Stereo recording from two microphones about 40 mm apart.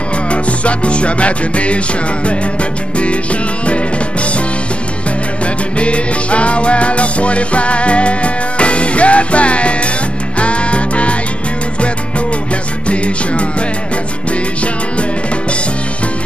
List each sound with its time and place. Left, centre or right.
0.3 s music: left
5.8 s music: left
12.8 s music: left